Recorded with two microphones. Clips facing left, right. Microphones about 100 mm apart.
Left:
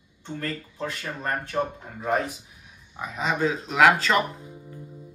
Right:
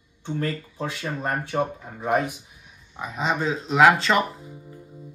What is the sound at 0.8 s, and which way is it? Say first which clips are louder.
Speech: right 3 dB; 15° right (ahead or behind).